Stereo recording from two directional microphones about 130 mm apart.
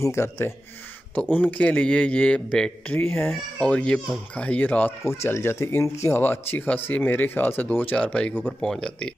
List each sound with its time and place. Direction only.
0.0 s speech: 20° left (ahead or behind); by 9.1 s 5° left (ahead or behind)